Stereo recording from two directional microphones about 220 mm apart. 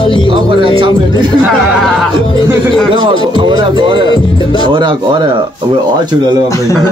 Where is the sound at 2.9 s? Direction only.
20° right (ahead or behind).